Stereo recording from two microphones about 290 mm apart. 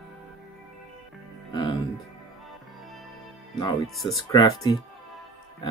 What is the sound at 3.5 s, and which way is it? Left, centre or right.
Speech, centre.